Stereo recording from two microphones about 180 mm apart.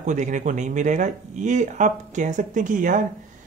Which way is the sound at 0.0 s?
45° right (ahead or behind).